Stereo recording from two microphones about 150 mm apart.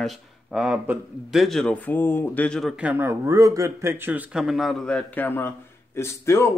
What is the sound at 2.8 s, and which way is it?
Speech, 15° right (ahead or behind).